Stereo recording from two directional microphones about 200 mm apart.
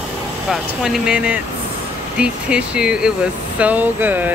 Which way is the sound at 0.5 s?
5° right (ahead or behind).